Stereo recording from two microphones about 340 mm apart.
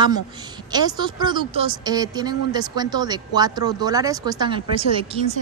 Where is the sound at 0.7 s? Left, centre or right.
Centre.